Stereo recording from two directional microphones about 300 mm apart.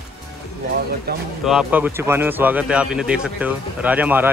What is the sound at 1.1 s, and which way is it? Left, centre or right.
Speech, right.